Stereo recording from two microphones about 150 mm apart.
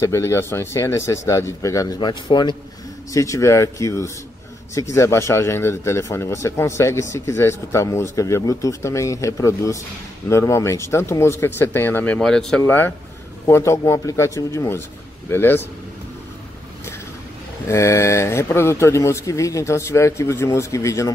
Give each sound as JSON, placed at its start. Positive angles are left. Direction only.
{"t": 0.0, "sound": "speech", "side_deg": 20}
{"t": 17.6, "sound": "speech", "side_deg": 20}